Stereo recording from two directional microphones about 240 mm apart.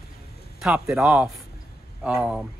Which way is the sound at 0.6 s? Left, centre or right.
Centre.